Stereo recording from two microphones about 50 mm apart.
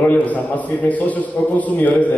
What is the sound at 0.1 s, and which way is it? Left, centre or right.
A man's voice, left.